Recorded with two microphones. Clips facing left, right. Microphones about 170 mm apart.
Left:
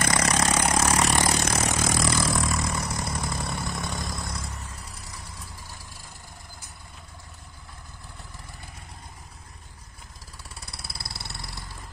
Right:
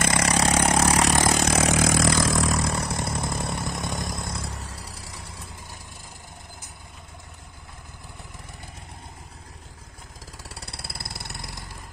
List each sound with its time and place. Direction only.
0.0 s vehicle: 30° right (ahead or behind)
1.3 s vehicle: 90° right
2.7 s vehicle: 30° right (ahead or behind)
4.7 s vehicle: 30° right (ahead or behind)
10.3 s vehicle: 70° right (ahead or behind)
11.1 s a sound: 15° right (ahead or behind)